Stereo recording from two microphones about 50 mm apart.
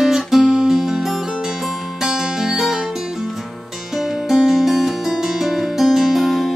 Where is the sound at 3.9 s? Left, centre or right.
Centre.